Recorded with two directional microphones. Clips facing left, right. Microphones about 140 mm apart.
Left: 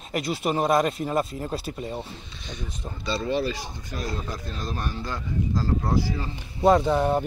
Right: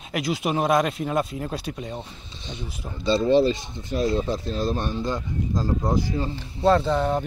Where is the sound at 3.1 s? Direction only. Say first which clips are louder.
Right 8 dB; 25° right (ahead or behind).